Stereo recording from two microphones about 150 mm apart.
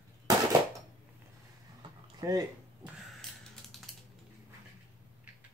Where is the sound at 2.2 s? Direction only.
25° right (ahead or behind).